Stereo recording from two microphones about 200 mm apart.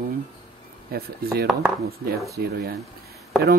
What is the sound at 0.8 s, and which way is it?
Speech, 50° right (ahead or behind).